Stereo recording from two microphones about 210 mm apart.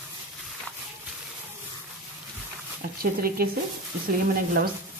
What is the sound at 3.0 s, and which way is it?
Speech, 45° right (ahead or behind).